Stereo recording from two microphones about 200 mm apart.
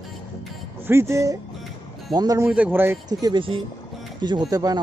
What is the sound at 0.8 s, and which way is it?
Speech, 15° right (ahead or behind).